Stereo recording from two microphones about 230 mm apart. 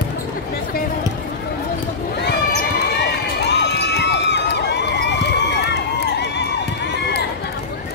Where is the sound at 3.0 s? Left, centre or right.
Left.